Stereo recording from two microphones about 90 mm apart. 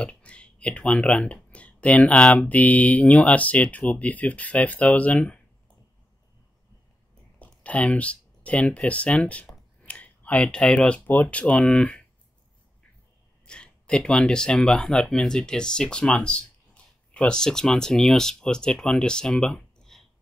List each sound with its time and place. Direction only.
0.0 s speech: 15° left (ahead or behind)
7.3 s a sound: 15° left (ahead or behind)
8.5 s speech: 15° left (ahead or behind)
9.8 s clicking: 15° left (ahead or behind)
11.1 s speech: 15° left (ahead or behind)
13.5 s speech: 10° left (ahead or behind)